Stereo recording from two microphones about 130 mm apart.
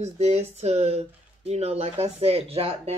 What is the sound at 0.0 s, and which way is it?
Speech, 55° right (ahead or behind).